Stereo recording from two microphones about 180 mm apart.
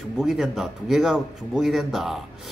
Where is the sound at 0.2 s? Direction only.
Centre (ahead or behind).